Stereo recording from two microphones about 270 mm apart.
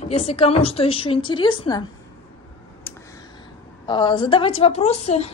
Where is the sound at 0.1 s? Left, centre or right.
Left.